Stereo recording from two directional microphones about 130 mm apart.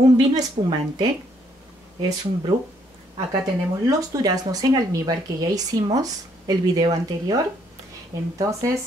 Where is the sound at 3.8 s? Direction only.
25° right (ahead or behind).